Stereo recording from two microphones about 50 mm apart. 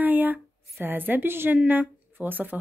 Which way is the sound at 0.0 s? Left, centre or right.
Right.